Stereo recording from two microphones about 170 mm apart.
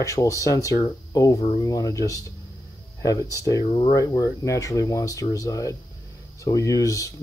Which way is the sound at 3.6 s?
35° left (ahead or behind).